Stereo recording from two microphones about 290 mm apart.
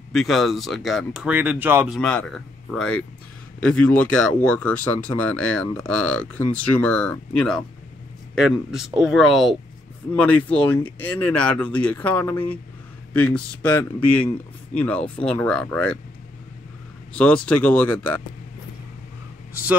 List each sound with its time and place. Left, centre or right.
0.1 s speech: centre
10.8 s speech: centre
11.1 s speech: centre
13.6 s speech: centre
17.1 s speech: centre